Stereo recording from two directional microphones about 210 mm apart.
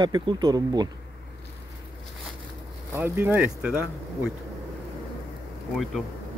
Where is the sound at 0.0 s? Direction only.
20° right (ahead or behind).